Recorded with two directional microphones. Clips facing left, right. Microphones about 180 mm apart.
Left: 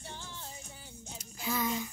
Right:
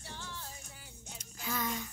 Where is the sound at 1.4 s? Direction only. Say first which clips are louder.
Left 4 dB; 10° left (ahead or behind).